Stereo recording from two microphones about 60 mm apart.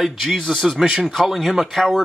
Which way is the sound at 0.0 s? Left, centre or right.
Centre.